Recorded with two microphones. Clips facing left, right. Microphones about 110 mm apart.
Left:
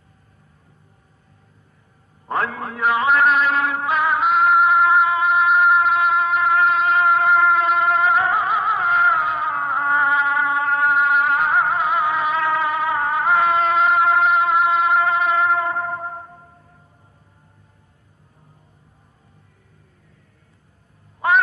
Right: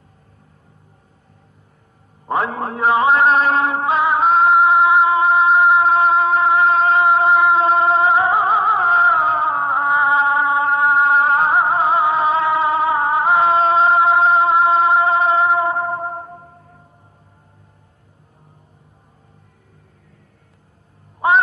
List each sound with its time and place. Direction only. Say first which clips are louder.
2.2 s a man's voice: right 3 dB; 20° right (ahead or behind)
2.5 s music: right 4 dB; 30° right (ahead or behind)